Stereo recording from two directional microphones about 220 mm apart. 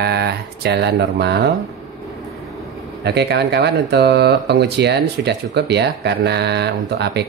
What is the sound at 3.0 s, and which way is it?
Speech, 50° right (ahead or behind).